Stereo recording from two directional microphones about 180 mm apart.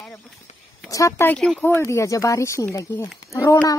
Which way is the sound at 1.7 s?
15° left (ahead or behind).